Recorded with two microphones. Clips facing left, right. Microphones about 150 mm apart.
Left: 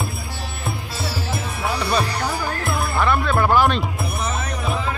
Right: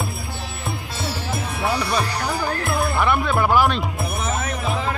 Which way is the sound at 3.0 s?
15° right (ahead or behind).